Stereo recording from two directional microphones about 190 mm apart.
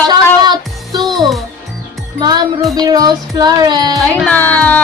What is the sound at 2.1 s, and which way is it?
Music, 20° right (ahead or behind).